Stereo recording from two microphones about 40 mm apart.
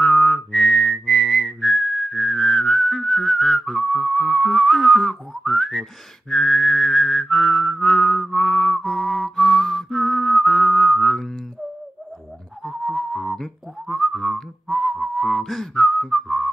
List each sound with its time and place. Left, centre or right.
0.0 s whistling: left
0.5 s whistling: centre
12.6 s whistling: centre